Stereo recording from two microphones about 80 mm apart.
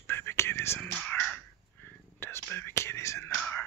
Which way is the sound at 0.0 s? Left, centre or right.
Left.